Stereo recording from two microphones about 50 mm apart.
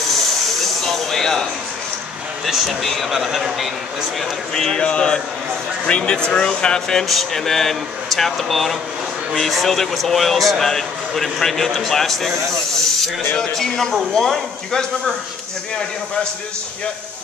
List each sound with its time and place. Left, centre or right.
0.1 s a sound: centre
2.5 s speech: centre
4.2 s speech: centre
13.4 s speech: centre